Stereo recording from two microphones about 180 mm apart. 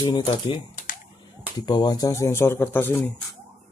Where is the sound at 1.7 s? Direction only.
20° left (ahead or behind).